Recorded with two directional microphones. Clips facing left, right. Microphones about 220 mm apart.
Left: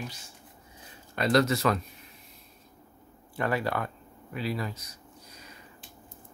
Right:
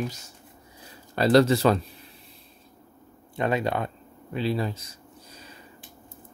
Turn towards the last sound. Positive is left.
turn(degrees=-30)  # may be behind; listen again after turning